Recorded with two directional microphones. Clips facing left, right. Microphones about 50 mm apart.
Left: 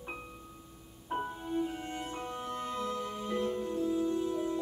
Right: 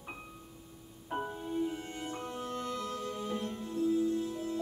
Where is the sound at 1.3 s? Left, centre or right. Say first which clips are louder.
Even; centre.